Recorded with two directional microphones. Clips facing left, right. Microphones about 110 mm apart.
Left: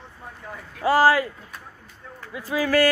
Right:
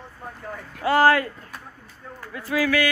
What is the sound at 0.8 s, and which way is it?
Speech, 10° left (ahead or behind).